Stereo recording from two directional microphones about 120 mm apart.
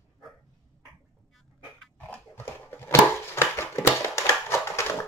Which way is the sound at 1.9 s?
10° left (ahead or behind).